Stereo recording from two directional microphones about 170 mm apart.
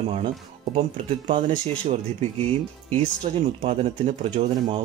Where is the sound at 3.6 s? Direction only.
40° right (ahead or behind).